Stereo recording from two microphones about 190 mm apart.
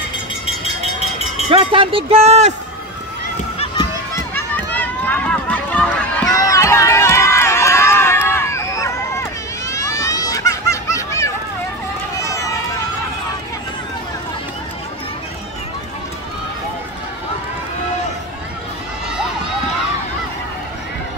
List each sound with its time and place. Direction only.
1.5 s speech: 30° right (ahead or behind)
4.1 s run: 10° left (ahead or behind)
9.7 s a sound: 15° left (ahead or behind)
12.2 s run: 15° left (ahead or behind)